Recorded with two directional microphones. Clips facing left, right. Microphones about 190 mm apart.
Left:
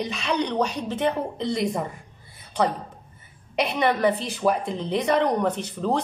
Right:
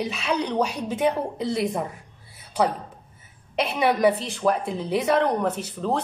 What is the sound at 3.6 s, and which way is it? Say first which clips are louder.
Speech: right 1 dB; 5° right (ahead or behind).